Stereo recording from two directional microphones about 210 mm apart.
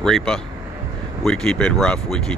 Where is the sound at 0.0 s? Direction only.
5° left (ahead or behind).